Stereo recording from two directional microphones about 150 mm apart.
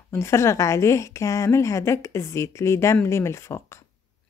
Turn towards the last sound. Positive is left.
turn(degrees=20)  # may be behind; listen again after turning